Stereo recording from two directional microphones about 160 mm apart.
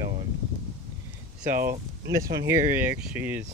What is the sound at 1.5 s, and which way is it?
Speech, 65° right (ahead or behind).